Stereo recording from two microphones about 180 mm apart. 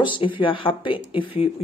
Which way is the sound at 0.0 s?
25° left (ahead or behind).